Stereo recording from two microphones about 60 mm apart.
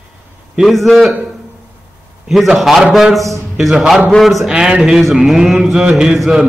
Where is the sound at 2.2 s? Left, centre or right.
Centre.